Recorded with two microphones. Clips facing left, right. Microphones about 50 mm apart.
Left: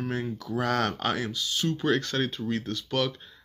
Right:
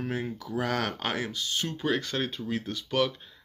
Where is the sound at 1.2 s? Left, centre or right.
Right.